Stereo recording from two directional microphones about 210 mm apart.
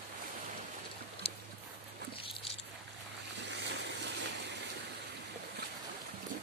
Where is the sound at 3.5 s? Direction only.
55° right (ahead or behind).